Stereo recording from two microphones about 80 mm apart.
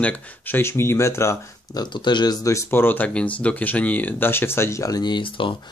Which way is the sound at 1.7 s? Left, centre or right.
Left.